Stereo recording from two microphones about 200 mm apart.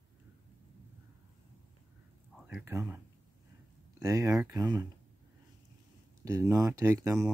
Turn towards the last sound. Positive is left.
turn(degrees=-15)  # may be behind; listen again after turning